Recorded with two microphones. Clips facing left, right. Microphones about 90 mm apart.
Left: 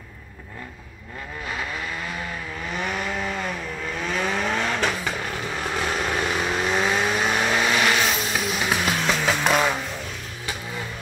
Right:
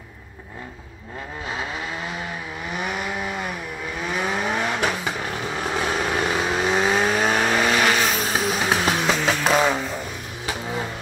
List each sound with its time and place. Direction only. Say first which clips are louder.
1.5 s vehicle: right 1 dB; 20° right (ahead or behind)
7.0 s vehicle: right 2 dB; 35° right (ahead or behind)
9.0 s music: right 2 dB; 10° right (ahead or behind)